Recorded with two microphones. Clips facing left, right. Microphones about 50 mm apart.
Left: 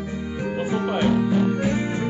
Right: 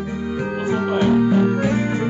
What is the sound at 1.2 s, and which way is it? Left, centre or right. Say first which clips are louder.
Music: right 4 dB; centre.